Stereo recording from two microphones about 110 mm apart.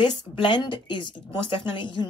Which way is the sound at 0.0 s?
45° left (ahead or behind).